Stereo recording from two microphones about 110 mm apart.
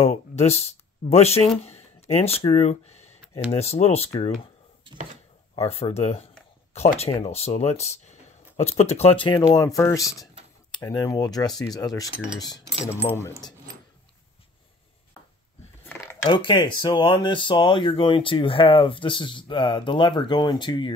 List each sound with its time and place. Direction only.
0.0 s speech: 85° left; by 4.3 s 65° left (ahead or behind)
5.6 s speech: 65° left (ahead or behind); by 9.6 s 50° left (ahead or behind)
9.8 s speech: 30° left (ahead or behind)
12.8 s speech: 20° left (ahead or behind)
15.8 s cutlery: 20° left (ahead or behind)
16.3 s speech: 50° left (ahead or behind)